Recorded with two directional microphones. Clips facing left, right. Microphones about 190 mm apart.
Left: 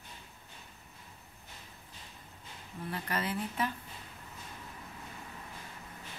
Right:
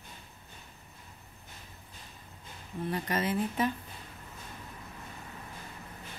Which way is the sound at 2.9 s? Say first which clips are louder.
Right 4 dB; 20° right (ahead or behind).